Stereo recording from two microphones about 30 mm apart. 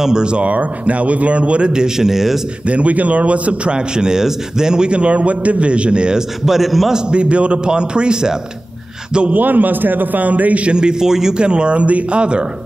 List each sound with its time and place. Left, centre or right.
0.2 s a man's voice: right
0.5 s speech: right
2.0 s a man's voice: centre
2.6 s speech: right
3.7 s speech: right
4.9 s a man's voice: right
6.1 s a man's voice: centre
7.1 s a man's voice: right
7.7 s speech: right
9.3 s a man's voice: right
10.8 s speech: right
11.3 s a man's voice: right
12.2 s a man's voice: right